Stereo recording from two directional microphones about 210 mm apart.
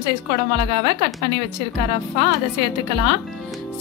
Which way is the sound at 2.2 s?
20° right (ahead or behind).